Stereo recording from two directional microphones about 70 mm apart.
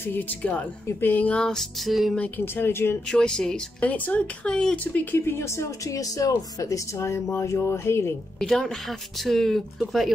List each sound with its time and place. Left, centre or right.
0.0 s speech: left
1.4 s speech: centre
2.1 s speech: left
2.4 s speech: left
3.1 s speech: centre
3.8 s speech: left
4.5 s speech: centre
4.9 s speech: left
8.4 s speech: centre